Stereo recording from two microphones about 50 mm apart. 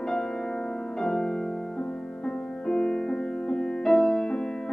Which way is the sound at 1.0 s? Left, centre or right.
Centre.